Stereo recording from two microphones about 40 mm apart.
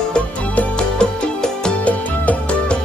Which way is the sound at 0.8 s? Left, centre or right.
Centre.